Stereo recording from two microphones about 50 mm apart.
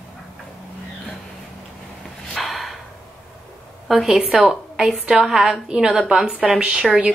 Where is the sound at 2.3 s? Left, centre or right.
Centre.